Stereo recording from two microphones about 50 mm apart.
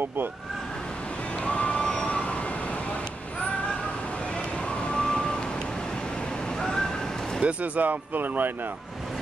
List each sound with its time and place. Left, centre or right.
1.4 s vehicle: left
4.9 s vehicle: centre
6.6 s a sound: centre
7.4 s speech: right